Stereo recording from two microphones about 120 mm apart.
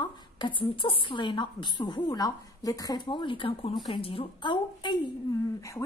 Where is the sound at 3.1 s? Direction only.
45° left (ahead or behind).